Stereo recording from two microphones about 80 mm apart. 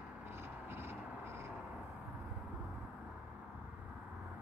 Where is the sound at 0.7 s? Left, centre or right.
Right.